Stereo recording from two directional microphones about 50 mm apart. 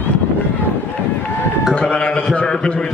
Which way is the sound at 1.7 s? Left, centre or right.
Left.